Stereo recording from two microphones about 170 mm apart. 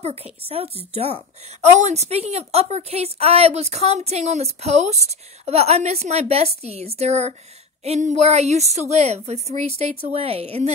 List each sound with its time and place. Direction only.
0.0 s a woman's voice: 35° right (ahead or behind)